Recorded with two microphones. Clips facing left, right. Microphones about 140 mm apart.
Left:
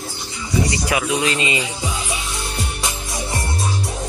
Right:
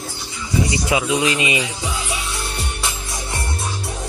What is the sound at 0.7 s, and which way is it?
Speech, 20° right (ahead or behind).